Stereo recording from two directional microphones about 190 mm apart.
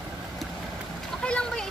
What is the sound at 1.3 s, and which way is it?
Splash, 5° left (ahead or behind).